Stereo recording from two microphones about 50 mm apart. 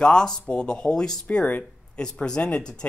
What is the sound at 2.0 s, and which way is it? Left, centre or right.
Speech, centre.